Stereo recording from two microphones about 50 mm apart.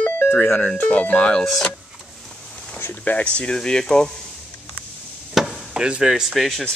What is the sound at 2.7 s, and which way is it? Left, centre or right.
Speech, left.